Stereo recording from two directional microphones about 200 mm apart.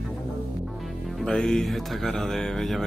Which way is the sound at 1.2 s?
Centre (ahead or behind).